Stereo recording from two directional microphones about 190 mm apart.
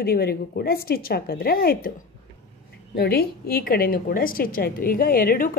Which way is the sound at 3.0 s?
55° left (ahead or behind).